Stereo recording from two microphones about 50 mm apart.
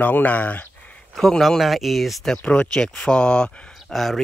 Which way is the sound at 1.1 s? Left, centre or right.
Centre.